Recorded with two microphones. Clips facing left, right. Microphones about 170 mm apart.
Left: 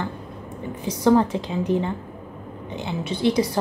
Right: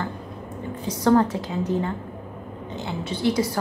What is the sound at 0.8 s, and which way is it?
A woman's voice, 15° left (ahead or behind).